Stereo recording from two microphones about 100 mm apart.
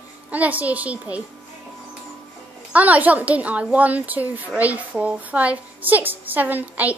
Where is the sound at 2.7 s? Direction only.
15° right (ahead or behind).